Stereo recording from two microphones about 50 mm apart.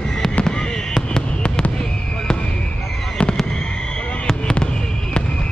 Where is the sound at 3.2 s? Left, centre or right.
Centre.